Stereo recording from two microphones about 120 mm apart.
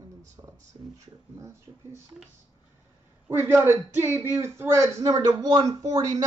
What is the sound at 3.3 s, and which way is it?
A man's voice, 20° right (ahead or behind).